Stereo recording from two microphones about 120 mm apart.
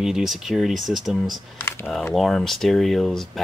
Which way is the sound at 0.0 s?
5° right (ahead or behind).